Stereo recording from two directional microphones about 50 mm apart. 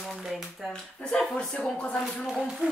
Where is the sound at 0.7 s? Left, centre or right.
Centre.